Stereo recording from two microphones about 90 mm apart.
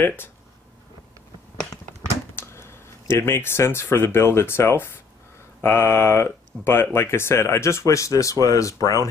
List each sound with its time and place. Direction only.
0.0 s speech: 20° left (ahead or behind)
2.3 s speech: 30° left (ahead or behind)